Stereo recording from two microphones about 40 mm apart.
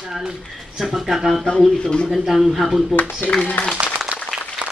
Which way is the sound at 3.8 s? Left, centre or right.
Right.